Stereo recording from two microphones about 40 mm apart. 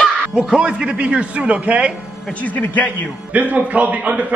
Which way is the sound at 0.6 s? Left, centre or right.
Right.